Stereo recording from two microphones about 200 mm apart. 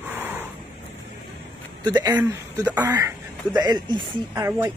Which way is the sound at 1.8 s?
20° right (ahead or behind).